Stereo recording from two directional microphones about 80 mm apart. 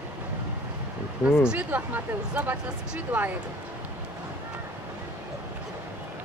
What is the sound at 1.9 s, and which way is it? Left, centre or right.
Speech, right.